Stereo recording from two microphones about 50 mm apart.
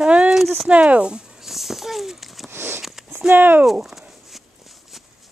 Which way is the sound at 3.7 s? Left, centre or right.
Centre.